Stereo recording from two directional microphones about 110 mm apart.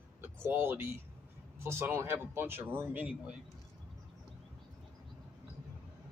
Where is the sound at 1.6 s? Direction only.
20° right (ahead or behind).